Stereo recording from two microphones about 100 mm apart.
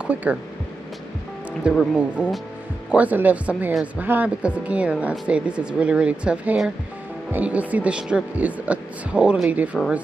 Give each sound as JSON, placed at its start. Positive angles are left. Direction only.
{"t": 0.0, "sound": "speech", "side_deg": -15}
{"t": 1.6, "sound": "speech", "side_deg": 0}
{"t": 2.9, "sound": "speech", "side_deg": -15}